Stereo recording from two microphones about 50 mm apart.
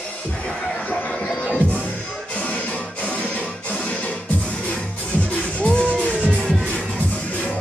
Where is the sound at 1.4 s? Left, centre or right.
Left.